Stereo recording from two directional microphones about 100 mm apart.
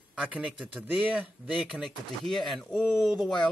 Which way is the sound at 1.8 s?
Centre (ahead or behind).